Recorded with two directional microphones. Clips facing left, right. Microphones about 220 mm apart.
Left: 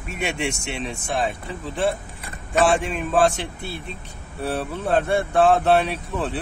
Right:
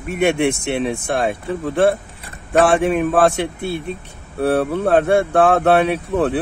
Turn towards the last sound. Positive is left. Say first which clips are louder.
# right 9 dB
turn(degrees=-60)  # may be behind; listen again after turning